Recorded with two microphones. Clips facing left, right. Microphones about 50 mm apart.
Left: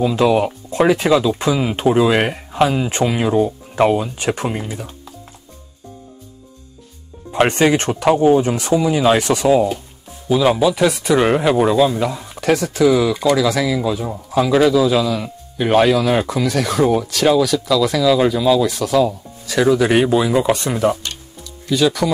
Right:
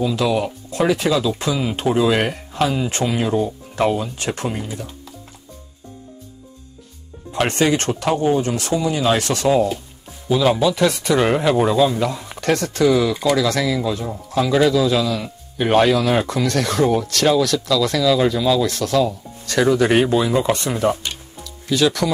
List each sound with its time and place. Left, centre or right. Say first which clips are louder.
0.0 s speech: left 4 dB; left
7.3 s speech: left 4 dB; centre
10.2 s speech: left 2 dB; centre